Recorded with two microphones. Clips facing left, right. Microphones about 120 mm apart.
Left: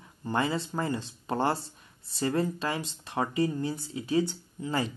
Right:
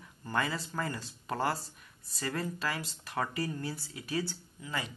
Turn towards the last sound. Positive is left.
turn(degrees=20)  # may be behind; listen again after turning